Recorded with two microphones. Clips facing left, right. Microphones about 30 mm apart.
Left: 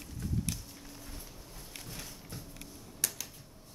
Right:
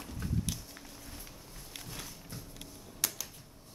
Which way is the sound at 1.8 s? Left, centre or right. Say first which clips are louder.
Right 1 dB; centre.